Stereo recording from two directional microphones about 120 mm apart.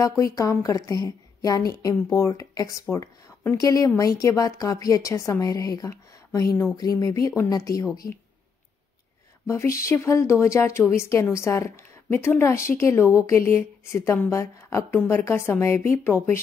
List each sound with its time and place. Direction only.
0.0 s a woman's voice: 30° left (ahead or behind)
9.5 s a woman's voice: 25° left (ahead or behind)